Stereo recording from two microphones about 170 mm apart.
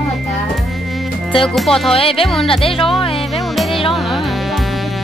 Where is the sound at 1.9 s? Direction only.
35° left (ahead or behind).